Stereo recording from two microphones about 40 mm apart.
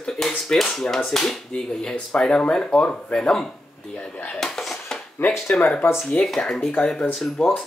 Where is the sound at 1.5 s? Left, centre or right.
Centre.